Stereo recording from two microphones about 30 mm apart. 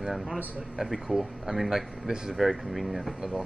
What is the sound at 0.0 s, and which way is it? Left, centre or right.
A man's voice, centre.